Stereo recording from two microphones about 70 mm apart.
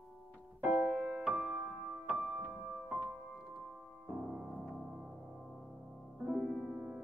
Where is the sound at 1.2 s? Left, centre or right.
Centre.